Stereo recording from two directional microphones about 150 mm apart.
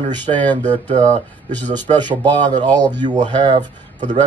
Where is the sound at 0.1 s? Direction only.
30° right (ahead or behind).